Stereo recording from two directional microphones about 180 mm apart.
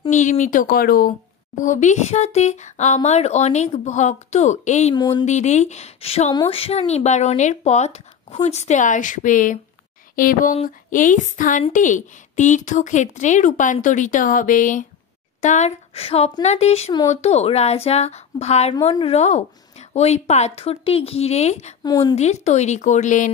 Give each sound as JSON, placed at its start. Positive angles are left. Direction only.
{"t": 0.1, "sound": "a woman's voice", "side_deg": 45}
{"t": 21.8, "sound": "a woman's voice", "side_deg": 20}
{"t": 22.1, "sound": "speech", "side_deg": 40}